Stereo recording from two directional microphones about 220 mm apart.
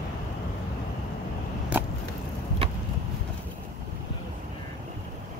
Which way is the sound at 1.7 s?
10° right (ahead or behind).